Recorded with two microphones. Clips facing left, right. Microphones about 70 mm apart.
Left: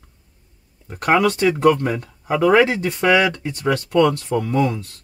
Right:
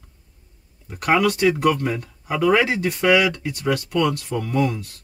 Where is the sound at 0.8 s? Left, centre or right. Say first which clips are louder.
Left 2 dB; left.